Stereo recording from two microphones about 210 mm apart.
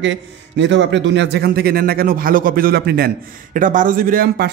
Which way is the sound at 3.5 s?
40° right (ahead or behind).